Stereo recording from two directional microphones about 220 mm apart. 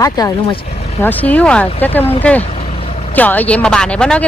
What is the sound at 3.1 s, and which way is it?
Speech, 10° left (ahead or behind).